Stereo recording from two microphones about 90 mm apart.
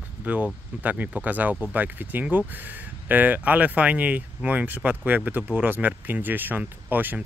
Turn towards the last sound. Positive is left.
turn(degrees=-20)  # may be behind; listen again after turning